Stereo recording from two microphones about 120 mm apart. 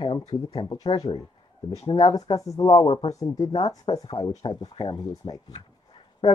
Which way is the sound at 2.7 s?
45° left (ahead or behind).